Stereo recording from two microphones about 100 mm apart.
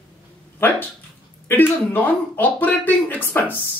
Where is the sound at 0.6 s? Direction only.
20° left (ahead or behind).